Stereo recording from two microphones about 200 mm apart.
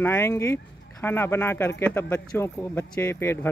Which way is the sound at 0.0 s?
10° left (ahead or behind).